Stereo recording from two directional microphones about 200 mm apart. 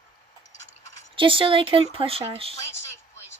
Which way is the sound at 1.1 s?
25° right (ahead or behind).